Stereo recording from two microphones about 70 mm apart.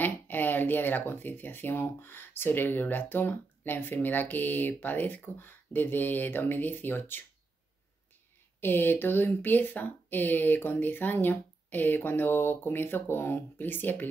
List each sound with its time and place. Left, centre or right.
0.0 s speech: left
8.5 s speech: left